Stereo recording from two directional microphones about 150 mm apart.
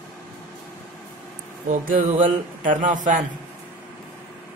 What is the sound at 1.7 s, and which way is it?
A man's voice, 60° right (ahead or behind).